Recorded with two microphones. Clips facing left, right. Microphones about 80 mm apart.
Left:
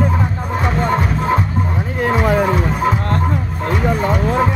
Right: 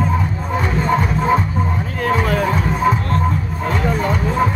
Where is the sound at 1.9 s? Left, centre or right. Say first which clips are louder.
Left 3 dB; centre.